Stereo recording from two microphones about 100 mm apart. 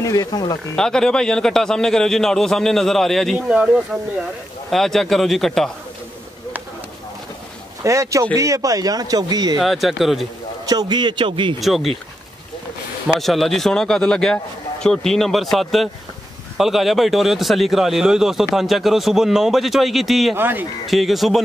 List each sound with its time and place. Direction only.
0.0 s speech: 35° left (ahead or behind)
0.7 s speech: 5° left (ahead or behind)
3.3 s speech: 10° right (ahead or behind)
4.6 s speech: 5° left (ahead or behind)
7.8 s speech: 30° right (ahead or behind)
9.6 s speech: centre (ahead or behind)
10.6 s a man's voice: 40° right (ahead or behind)
11.6 s speech: centre (ahead or behind)
13.2 s speech: centre (ahead or behind)
20.3 s speech: 20° right (ahead or behind)
20.8 s speech: centre (ahead or behind)